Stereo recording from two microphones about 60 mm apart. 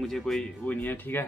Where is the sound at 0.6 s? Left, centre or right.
Left.